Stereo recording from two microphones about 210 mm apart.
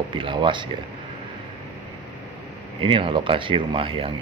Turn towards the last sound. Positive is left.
turn(degrees=-25)  # may be behind; listen again after turning